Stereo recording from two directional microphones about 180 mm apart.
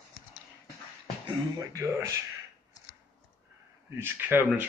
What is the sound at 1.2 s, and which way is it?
Speech, 15° right (ahead or behind).